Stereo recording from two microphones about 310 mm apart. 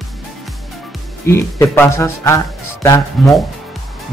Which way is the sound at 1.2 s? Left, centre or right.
Centre.